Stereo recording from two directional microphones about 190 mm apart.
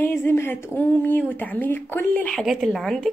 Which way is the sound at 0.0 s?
10° left (ahead or behind).